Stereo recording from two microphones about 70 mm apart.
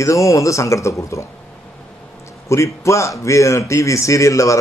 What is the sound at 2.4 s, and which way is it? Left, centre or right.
Speech, left.